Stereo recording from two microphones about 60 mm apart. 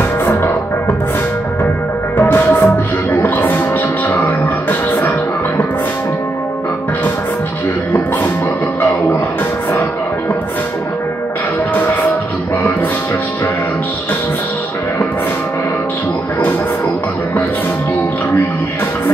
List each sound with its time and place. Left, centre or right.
2.1 s music: left
11.7 s music: left